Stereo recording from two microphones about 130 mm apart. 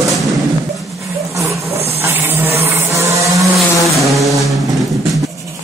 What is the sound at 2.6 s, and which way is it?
Vehicle, 20° right (ahead or behind).